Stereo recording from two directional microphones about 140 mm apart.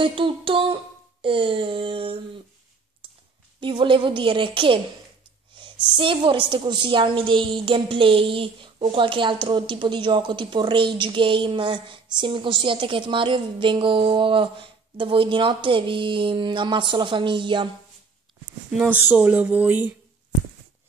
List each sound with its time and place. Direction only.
0.0 s a woman's voice: 40° right (ahead or behind)
3.6 s a woman's voice: 35° right (ahead or behind)
18.7 s speech: 10° right (ahead or behind)